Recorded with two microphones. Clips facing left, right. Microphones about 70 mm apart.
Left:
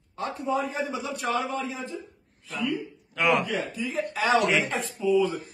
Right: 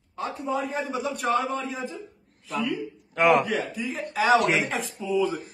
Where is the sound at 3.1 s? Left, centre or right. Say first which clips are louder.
Right 4 dB; right.